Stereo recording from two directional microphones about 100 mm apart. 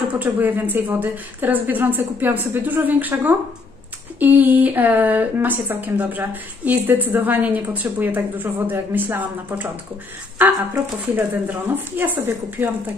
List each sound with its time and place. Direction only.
0.1 s a woman's voice: 20° right (ahead or behind)